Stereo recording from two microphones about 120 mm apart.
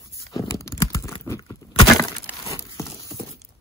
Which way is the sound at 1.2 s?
25° left (ahead or behind).